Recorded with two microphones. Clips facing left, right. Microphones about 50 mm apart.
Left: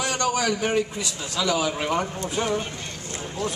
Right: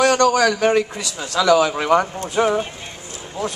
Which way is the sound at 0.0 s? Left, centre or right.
Right.